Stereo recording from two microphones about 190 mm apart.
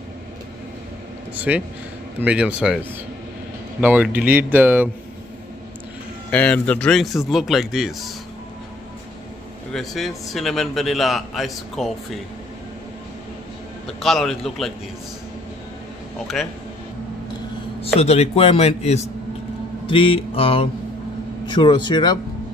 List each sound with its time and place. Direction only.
1.3 s a man's voice: 10° right (ahead or behind)
3.8 s a man's voice: 10° right (ahead or behind)
6.3 s a man's voice: 5° left (ahead or behind)
9.7 s a man's voice: centre (ahead or behind)
13.8 s a man's voice: centre (ahead or behind)
18.0 s speech: 35° left (ahead or behind)
19.9 s mantra: 30° left (ahead or behind)